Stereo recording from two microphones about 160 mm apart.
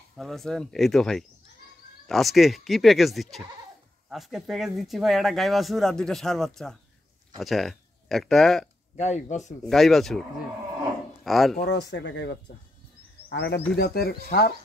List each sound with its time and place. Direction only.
0.1 s speech: centre (ahead or behind)
8.9 s speech: 45° left (ahead or behind)
9.6 s speech: centre (ahead or behind)
11.2 s speech: centre (ahead or behind)
11.5 s speech: 90° left
13.7 s speech: 80° left